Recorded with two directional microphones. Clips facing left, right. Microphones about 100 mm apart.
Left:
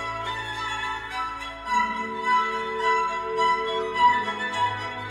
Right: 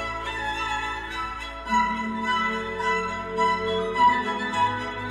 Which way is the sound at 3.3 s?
15° right (ahead or behind).